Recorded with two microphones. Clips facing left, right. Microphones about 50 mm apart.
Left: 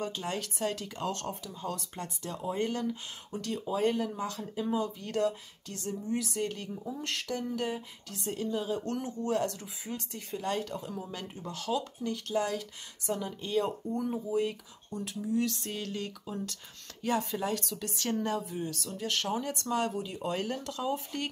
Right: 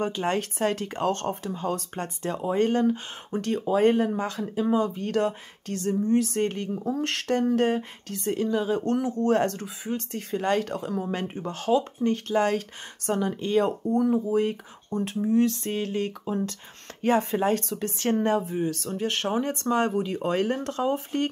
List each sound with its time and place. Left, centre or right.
0.0 s a woman's voice: right
11.1 s a woman's voice: right
14.4 s speech: right